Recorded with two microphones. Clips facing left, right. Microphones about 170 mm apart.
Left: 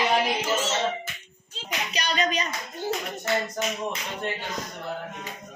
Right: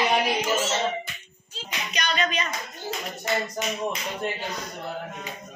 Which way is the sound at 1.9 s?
40° left (ahead or behind).